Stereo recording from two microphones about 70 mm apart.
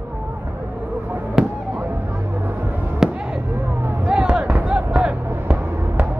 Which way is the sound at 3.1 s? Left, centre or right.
Centre.